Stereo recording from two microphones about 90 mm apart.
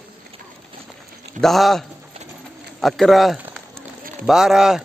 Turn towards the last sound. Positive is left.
turn(degrees=-5)  # may be behind; listen again after turning